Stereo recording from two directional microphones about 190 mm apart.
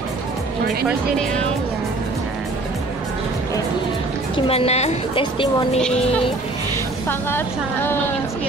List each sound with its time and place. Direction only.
4.4 s a woman's voice: 30° left (ahead or behind)
7.1 s a woman's voice: 10° left (ahead or behind)